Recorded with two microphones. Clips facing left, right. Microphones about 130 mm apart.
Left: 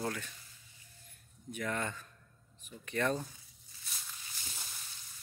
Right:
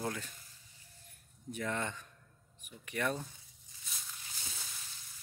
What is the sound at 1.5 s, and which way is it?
Speech, 25° right (ahead or behind).